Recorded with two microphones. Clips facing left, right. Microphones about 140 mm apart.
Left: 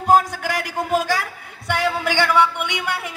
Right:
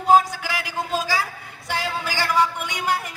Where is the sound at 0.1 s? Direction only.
50° left (ahead or behind).